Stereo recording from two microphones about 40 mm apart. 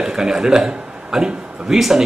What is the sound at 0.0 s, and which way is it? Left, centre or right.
A man's voice, centre.